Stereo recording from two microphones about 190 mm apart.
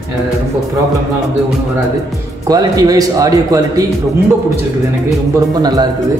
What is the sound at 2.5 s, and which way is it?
Speech, 20° right (ahead or behind).